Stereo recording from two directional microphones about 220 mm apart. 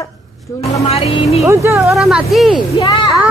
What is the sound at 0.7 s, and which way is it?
Speech, 25° left (ahead or behind).